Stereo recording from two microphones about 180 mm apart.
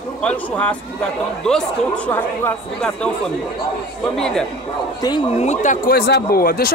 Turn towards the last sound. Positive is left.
turn(degrees=55)  # may be behind; listen again after turning